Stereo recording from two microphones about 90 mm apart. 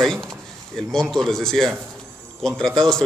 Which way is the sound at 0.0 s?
5° left (ahead or behind).